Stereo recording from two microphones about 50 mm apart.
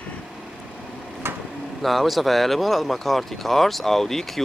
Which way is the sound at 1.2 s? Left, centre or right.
Right.